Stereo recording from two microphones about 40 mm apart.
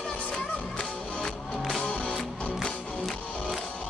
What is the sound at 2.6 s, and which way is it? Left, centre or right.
Music, centre.